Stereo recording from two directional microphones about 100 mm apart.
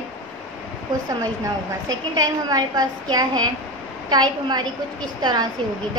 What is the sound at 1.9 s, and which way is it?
A woman's voice, 40° right (ahead or behind).